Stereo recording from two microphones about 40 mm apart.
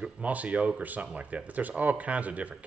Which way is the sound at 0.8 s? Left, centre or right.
Right.